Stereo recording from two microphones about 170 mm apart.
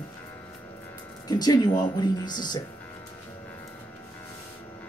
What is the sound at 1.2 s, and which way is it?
A woman's voice, 25° left (ahead or behind).